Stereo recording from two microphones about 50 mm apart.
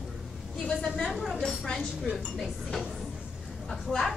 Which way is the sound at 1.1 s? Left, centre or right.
Centre.